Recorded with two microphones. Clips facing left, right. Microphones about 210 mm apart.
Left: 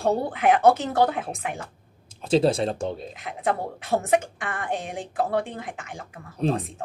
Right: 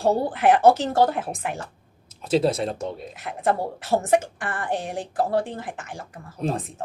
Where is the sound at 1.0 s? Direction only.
Centre (ahead or behind).